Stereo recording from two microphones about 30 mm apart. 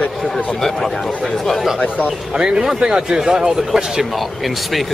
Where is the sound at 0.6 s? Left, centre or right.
Centre.